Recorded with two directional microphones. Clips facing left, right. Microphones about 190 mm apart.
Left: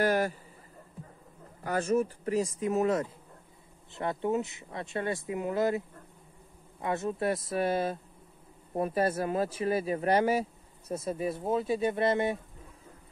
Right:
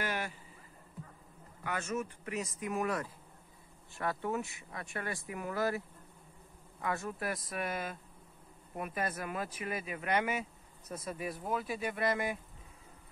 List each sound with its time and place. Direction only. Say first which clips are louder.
0.0 s a man's voice: left 11 dB; 40° left (ahead or behind)
1.6 s speech: left 9 dB; 35° left (ahead or behind)